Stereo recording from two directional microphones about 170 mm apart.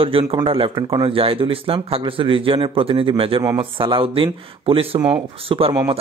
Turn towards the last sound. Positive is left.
turn(degrees=-35)  # may be behind; listen again after turning